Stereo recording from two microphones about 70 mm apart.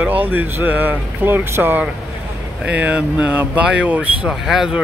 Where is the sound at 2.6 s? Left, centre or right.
Right.